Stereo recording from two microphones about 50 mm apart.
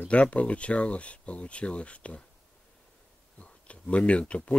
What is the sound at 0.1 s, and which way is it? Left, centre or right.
Speech, left.